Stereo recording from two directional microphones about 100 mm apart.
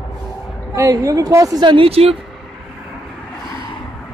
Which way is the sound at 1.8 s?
90° right.